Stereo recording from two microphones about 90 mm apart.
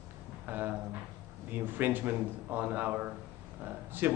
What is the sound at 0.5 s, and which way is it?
A man's voice, 25° right (ahead or behind).